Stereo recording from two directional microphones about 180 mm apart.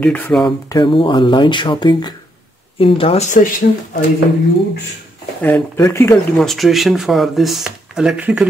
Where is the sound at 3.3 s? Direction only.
45° left (ahead or behind).